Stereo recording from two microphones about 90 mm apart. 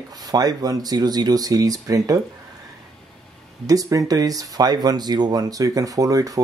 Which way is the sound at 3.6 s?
40° right (ahead or behind).